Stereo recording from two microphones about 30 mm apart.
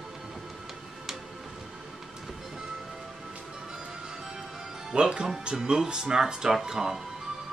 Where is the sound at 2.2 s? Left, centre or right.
Centre.